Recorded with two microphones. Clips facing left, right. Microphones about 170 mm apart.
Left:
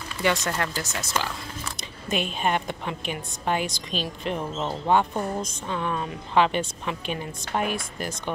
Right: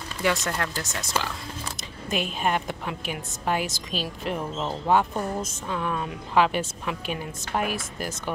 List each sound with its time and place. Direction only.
0.2 s a woman's voice: centre (ahead or behind)